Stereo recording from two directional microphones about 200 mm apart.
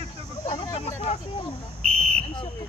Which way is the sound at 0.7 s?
35° left (ahead or behind).